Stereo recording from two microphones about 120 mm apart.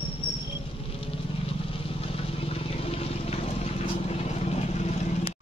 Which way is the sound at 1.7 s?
50° left (ahead or behind).